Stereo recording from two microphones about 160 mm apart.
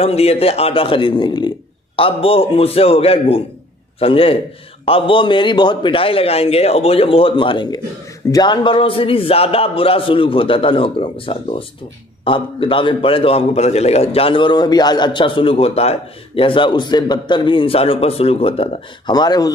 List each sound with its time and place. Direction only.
0.0 s a man's voice: 40° left (ahead or behind)